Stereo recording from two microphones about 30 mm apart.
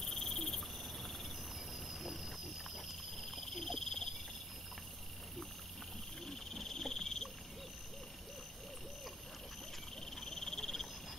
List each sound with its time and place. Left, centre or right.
0.0 s cricket: centre
1.9 s a sound: centre
3.3 s frog: centre
6.2 s cricket: centre
10.2 s frog: centre